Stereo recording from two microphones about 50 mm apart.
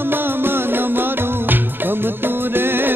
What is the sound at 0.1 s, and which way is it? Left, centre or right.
Music, right.